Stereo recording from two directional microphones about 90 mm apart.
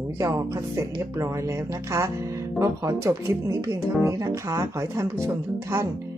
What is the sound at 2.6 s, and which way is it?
Speech, 35° right (ahead or behind).